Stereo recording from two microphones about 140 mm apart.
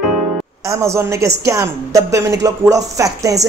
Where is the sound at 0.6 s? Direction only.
20° right (ahead or behind).